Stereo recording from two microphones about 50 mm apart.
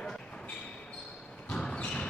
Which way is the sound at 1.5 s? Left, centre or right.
Centre.